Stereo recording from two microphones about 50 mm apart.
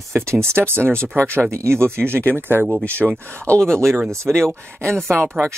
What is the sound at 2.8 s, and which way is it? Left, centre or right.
Speech, left.